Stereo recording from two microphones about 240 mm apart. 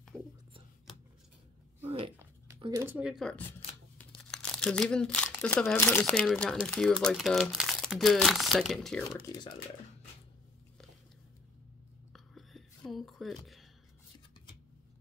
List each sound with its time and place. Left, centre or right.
1.8 s a sound: right
2.6 s speech: centre
12.1 s whispering: centre